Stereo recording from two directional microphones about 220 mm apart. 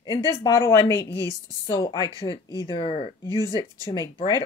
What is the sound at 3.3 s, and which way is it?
Speech, 15° right (ahead or behind).